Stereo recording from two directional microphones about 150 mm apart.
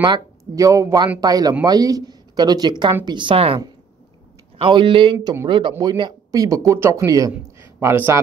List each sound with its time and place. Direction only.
0.0 s speech: 25° right (ahead or behind)
4.6 s a man's voice: 35° right (ahead or behind); by 8.2 s 15° right (ahead or behind)